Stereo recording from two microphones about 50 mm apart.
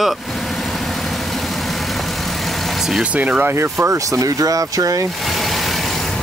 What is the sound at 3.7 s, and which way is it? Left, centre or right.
Speech, right.